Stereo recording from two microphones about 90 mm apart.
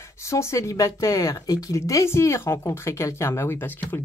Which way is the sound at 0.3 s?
30° left (ahead or behind).